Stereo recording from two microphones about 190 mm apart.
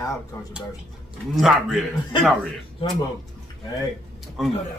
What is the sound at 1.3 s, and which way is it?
Speech, centre (ahead or behind).